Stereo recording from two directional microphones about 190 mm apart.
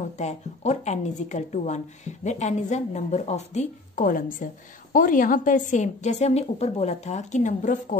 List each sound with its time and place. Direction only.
0.2 s a woman's voice: 35° left (ahead or behind)